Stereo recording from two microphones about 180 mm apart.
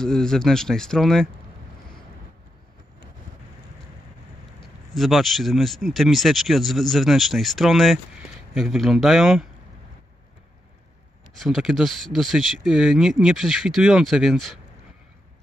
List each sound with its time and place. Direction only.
0.0 s speech: 5° left (ahead or behind)
4.9 s speech: centre (ahead or behind)
11.3 s speech: centre (ahead or behind)